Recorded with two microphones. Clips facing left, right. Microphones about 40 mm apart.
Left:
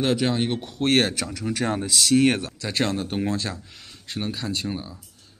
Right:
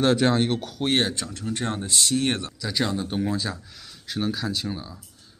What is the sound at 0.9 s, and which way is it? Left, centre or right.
Speech, left.